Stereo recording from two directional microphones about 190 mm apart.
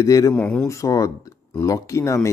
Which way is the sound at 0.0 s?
20° left (ahead or behind).